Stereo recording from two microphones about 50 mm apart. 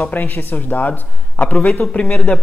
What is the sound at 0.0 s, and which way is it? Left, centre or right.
Speech, left.